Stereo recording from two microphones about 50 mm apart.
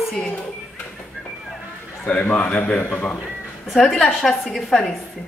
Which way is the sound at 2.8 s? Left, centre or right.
Left.